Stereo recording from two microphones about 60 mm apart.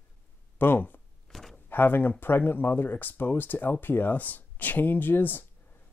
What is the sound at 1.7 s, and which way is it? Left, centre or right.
Speech, left.